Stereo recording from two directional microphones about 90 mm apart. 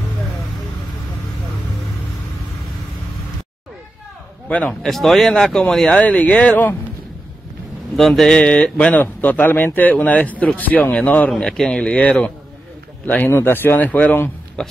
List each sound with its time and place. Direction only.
4.5 s a man's voice: 15° left (ahead or behind)
4.8 s speech: centre (ahead or behind); by 6.8 s 20° left (ahead or behind)
7.9 s speech: 5° left (ahead or behind); by 14.3 s 20° left (ahead or behind)
14.6 s a sound: 5° left (ahead or behind)